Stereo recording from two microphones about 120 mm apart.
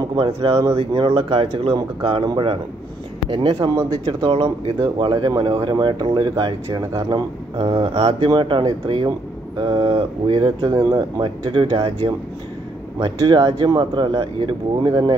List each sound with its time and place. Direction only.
0.0 s speech: 45° right (ahead or behind)
10.7 s speech: 30° right (ahead or behind)